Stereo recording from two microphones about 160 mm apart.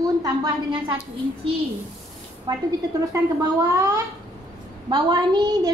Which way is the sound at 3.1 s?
20° right (ahead or behind).